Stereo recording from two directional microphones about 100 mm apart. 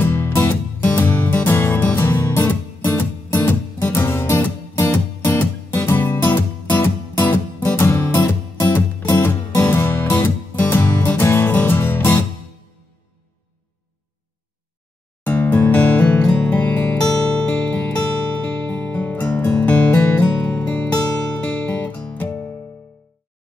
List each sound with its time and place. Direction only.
0.0 s music: 20° left (ahead or behind)
15.2 s music: 15° left (ahead or behind)